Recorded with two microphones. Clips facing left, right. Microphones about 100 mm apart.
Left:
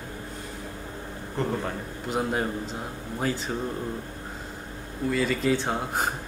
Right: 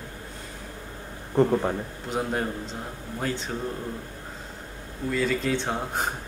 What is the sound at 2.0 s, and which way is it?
A man's voice, 5° left (ahead or behind).